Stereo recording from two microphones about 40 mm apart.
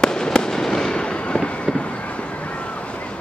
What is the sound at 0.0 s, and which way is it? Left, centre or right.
Fireworks, centre.